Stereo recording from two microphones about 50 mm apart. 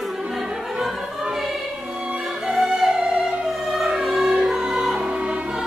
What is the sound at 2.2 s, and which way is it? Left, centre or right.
Music, centre.